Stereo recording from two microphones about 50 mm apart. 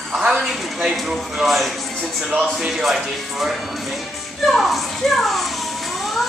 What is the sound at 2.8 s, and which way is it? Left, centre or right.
A child's voice, centre.